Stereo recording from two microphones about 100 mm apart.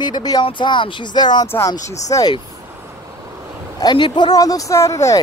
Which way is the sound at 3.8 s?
40° left (ahead or behind).